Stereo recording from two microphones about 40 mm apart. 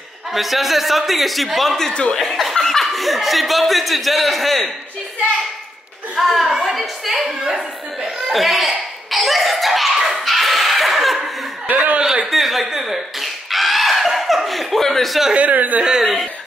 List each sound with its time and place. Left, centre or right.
0.3 s speech: centre
6.1 s a child's voice: centre
6.7 s a sound: centre
7.2 s chuckle: centre
8.3 s speech: centre
10.1 s a sound: centre
11.6 s speech: right
12.3 s speech: centre
15.3 s speech: right
16.0 s speech: centre